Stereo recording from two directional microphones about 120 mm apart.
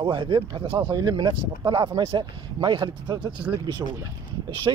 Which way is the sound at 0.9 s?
35° right (ahead or behind).